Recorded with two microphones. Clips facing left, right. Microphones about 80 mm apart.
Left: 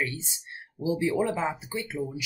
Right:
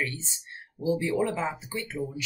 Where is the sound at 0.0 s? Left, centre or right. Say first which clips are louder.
Left 1 dB; centre.